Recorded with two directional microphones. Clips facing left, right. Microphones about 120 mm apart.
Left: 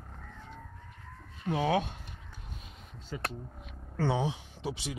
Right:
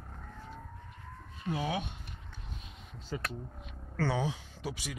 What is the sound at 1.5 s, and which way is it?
Speech, 60° left (ahead or behind).